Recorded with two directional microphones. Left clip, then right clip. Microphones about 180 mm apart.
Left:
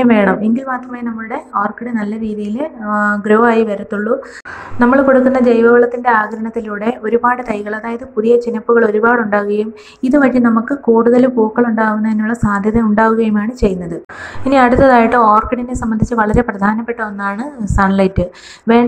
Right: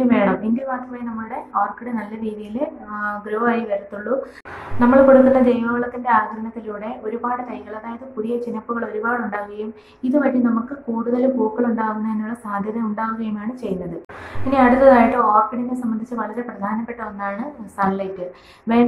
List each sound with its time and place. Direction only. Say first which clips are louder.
0.0 s a woman's voice: left 6 dB; 40° left (ahead or behind)
4.7 s a woman's voice: left 2 dB; 40° left (ahead or behind)
14.5 s a woman's voice: left 4 dB; 45° left (ahead or behind)